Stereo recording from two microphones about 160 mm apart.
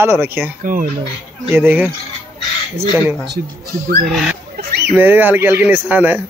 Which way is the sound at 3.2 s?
85° right.